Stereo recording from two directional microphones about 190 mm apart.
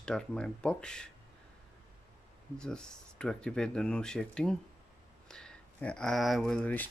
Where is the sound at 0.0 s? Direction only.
5° left (ahead or behind).